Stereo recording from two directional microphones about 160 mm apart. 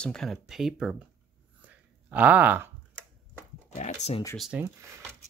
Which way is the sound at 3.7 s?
45° left (ahead or behind).